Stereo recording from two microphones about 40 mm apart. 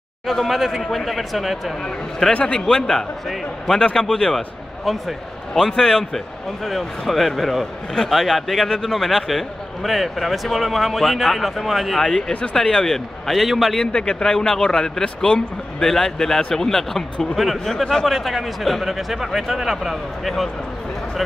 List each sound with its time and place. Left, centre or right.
0.3 s speech: centre
2.4 s speech: centre
5.5 s speech: centre
12.0 s speech: centre
13.3 s speech: centre
13.9 s speech: centre
17.6 s speech: centre
18.0 s speech: centre